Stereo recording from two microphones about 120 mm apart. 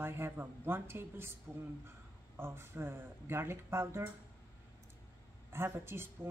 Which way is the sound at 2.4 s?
20° right (ahead or behind).